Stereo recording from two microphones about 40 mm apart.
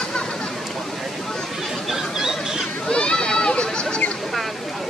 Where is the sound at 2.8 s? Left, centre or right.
Left.